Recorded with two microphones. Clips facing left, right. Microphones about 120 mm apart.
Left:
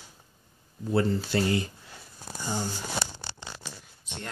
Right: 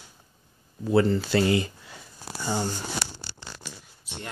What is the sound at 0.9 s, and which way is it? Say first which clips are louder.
Speech: right 4 dB; 90° right.